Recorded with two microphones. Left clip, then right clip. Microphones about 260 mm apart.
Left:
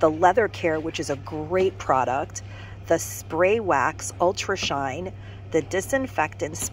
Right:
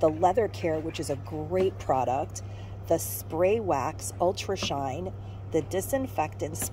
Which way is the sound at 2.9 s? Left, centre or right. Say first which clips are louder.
Left 4 dB; centre.